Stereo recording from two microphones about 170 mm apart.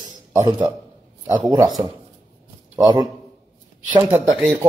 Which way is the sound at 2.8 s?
25° right (ahead or behind).